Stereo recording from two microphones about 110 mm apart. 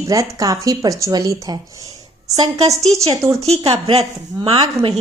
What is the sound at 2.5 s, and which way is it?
Speech, 70° right (ahead or behind).